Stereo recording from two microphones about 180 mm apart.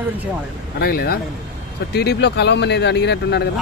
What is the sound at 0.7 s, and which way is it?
Speech, 55° left (ahead or behind).